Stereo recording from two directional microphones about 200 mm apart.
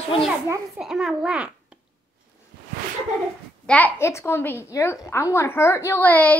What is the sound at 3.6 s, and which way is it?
A woman's voice, 10° left (ahead or behind).